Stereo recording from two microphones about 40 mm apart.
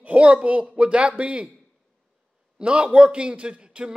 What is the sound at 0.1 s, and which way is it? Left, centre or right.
A man's voice, right.